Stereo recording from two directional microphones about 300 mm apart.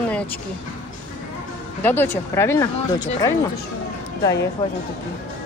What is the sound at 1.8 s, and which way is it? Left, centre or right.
Speech, centre.